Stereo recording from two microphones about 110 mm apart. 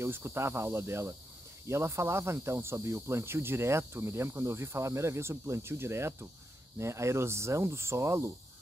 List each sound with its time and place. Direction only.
0.0 s cricket: 20° right (ahead or behind)